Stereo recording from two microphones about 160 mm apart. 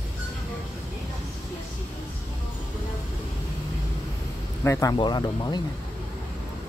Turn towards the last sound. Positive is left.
turn(degrees=25)  # may be behind; listen again after turning